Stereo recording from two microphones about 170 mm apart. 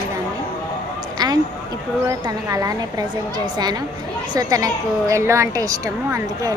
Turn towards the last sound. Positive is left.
turn(degrees=-20)  # may be behind; listen again after turning